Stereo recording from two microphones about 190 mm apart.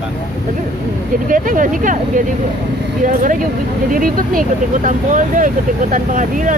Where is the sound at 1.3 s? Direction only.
45° right (ahead or behind).